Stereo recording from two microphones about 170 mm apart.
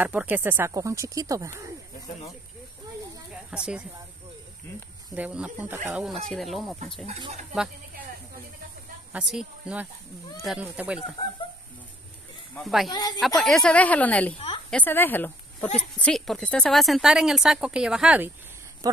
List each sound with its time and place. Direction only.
0.0 s speech: 10° right (ahead or behind)
3.4 s a woman's voice: 5° right (ahead or behind)
5.1 s speech: 10° right (ahead or behind)
7.1 s speech: 30° right (ahead or behind)
9.1 s speech: 5° right (ahead or behind)
12.5 s speech: centre (ahead or behind)
12.9 s speech: 25° left (ahead or behind)
13.4 s speech: 5° left (ahead or behind)